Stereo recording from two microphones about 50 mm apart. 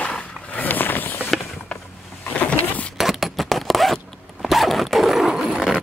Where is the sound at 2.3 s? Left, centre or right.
Left.